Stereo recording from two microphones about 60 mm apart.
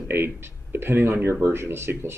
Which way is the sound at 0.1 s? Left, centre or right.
Right.